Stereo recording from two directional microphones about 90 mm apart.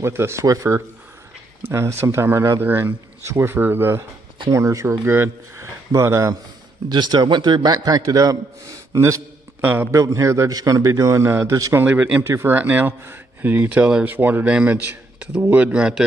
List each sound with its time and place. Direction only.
0.0 s a man's voice: 30° right (ahead or behind)
4.5 s a man's voice: 35° right (ahead or behind)
6.9 s a man's voice: 55° right (ahead or behind); by 9.2 s 35° right (ahead or behind)
9.6 s a man's voice: 20° right (ahead or behind)
9.8 s a man's voice: 35° right (ahead or behind)
11.2 s a man's voice: 25° right (ahead or behind); by 16.1 s 10° right (ahead or behind)